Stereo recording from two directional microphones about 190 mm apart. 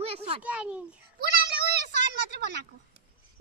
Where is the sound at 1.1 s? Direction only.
55° right (ahead or behind).